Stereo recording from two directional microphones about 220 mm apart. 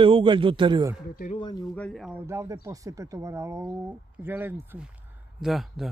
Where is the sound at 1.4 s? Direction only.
20° left (ahead or behind).